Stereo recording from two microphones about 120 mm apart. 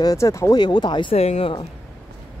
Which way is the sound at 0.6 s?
40° left (ahead or behind).